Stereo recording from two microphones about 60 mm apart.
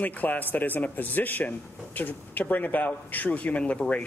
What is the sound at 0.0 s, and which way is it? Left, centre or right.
Speech, left.